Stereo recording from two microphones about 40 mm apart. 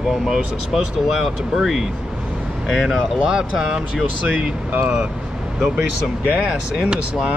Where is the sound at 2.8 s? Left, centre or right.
Centre.